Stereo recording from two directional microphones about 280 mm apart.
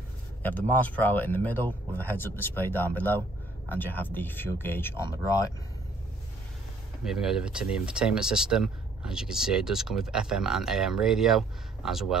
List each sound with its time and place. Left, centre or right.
0.4 s speech: centre
7.1 s speech: centre